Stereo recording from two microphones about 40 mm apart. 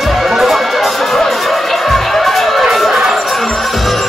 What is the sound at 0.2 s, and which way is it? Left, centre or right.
Music, centre.